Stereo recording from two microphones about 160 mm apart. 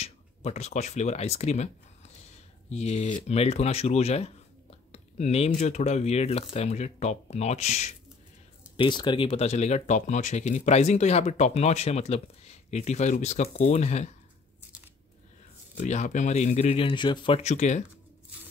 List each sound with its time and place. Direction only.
0.0 s speech: 45° left (ahead or behind)
2.7 s speech: 45° left (ahead or behind)
8.7 s speech: 30° left (ahead or behind); by 14.1 s 45° left (ahead or behind)
15.7 s speech: 50° left (ahead or behind)